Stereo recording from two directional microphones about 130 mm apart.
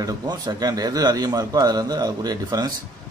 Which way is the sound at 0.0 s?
30° right (ahead or behind).